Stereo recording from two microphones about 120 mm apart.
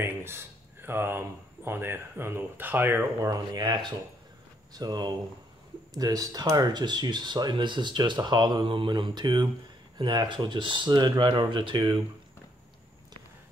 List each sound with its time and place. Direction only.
0.0 s speech: 20° right (ahead or behind)
3.2 s speech: 30° right (ahead or behind)